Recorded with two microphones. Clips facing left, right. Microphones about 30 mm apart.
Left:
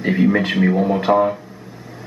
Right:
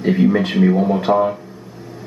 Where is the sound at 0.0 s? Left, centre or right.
Centre.